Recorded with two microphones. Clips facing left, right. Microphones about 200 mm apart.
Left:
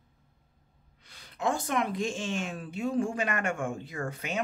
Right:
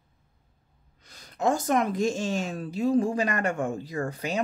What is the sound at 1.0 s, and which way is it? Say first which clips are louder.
A woman's voice: right 5 dB; 40° right (ahead or behind).